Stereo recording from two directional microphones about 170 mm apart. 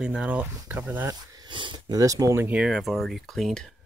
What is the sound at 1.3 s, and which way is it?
Speech, 25° right (ahead or behind).